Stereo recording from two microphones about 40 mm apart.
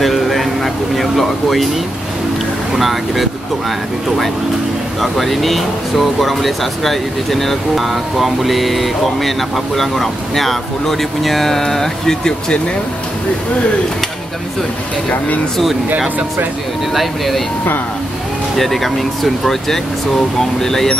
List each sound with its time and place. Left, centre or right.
0.0 s speech: centre
2.7 s speech: centre
5.0 s speech: centre
15.0 s speech: left
16.9 s speech: centre
18.6 s speech: centre